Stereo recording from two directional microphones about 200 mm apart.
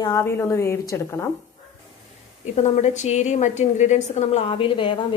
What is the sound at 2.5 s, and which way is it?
A woman's voice, 35° left (ahead or behind).